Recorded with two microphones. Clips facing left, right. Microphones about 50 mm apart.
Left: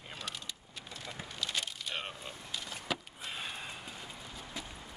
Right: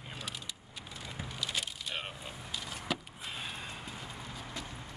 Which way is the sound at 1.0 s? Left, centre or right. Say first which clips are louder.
Right 1 dB; centre.